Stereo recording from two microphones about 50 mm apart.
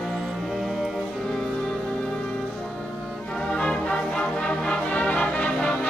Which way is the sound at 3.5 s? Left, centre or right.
Centre.